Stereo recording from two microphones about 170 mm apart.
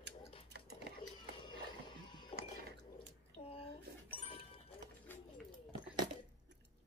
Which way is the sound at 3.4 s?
35° left (ahead or behind).